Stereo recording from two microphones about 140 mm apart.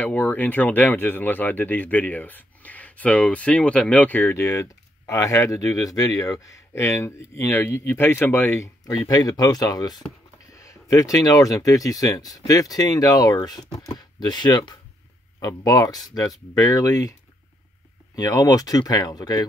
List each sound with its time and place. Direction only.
0.0 s speech: 10° left (ahead or behind)
18.1 s speech: 25° left (ahead or behind)